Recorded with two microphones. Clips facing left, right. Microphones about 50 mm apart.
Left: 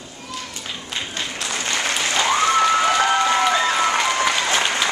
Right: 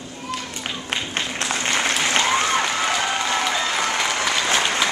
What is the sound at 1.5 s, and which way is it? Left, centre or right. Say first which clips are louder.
Applause: right 2 dB; centre.